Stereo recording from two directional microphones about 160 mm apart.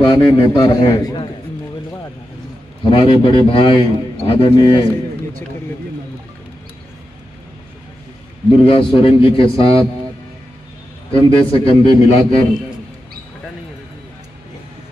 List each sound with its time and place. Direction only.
0.0 s a man's voice: 30° left (ahead or behind)
2.9 s a man's voice: 35° left (ahead or behind)
8.5 s a man's voice: 35° left (ahead or behind)
11.1 s a man's voice: 35° left (ahead or behind)